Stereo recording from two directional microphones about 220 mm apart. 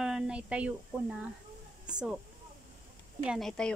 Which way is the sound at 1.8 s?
5° right (ahead or behind).